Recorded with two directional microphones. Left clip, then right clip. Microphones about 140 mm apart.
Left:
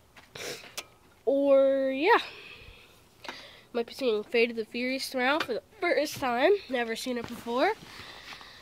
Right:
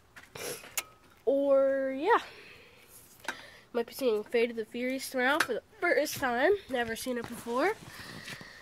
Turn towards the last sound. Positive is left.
turn(degrees=5)  # may be behind; listen again after turning